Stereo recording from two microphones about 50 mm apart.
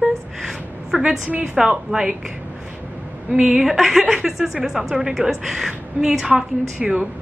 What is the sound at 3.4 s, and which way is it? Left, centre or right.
A woman's voice, centre.